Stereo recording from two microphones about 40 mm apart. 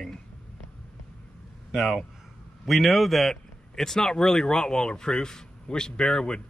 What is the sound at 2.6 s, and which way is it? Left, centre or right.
Speech, centre.